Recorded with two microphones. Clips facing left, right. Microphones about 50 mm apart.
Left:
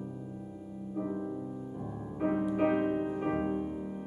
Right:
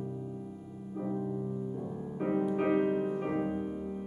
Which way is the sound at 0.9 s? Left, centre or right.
Centre.